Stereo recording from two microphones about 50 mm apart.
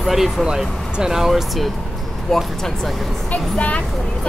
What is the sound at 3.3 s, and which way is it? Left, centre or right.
Speech, left.